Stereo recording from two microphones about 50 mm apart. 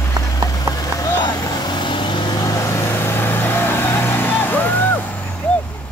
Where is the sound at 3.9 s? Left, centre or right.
Left.